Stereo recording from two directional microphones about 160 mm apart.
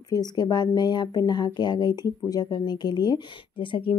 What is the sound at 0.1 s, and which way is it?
A woman's voice, 25° left (ahead or behind).